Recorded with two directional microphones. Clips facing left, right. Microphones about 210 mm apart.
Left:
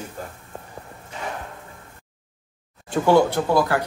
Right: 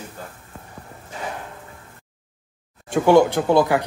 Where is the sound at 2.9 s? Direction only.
15° right (ahead or behind).